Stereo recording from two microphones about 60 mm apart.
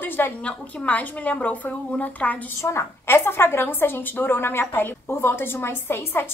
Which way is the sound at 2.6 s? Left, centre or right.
Left.